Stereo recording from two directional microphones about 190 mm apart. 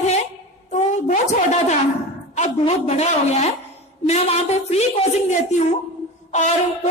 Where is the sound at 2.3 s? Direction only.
35° left (ahead or behind).